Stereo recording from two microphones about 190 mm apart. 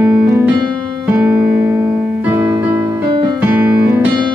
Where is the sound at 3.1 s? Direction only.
25° right (ahead or behind).